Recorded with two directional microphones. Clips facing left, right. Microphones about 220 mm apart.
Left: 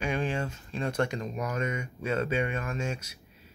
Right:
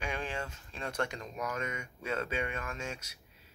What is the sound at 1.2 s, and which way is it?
Speech, 25° left (ahead or behind).